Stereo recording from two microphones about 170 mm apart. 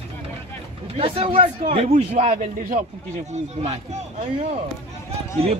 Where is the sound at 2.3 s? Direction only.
50° right (ahead or behind).